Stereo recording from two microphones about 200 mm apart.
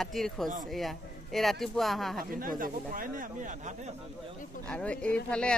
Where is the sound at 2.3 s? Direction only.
45° right (ahead or behind).